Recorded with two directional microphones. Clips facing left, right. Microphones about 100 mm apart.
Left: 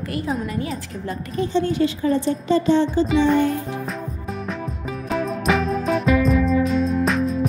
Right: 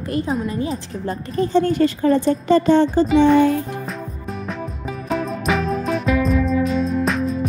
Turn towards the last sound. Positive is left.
turn(degrees=0)  # may be behind; listen again after turning